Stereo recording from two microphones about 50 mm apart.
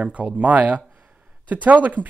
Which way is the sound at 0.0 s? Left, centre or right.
Right.